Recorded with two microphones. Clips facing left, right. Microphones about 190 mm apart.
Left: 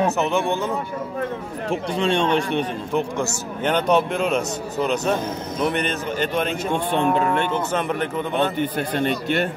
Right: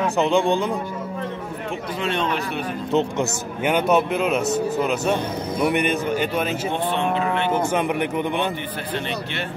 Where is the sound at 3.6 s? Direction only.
5° right (ahead or behind).